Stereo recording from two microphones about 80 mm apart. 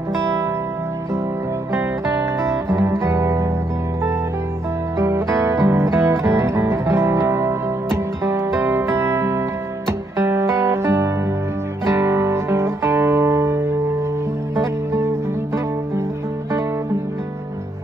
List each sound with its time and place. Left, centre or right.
0.1 s music: right
1.7 s music: right
4.9 s music: right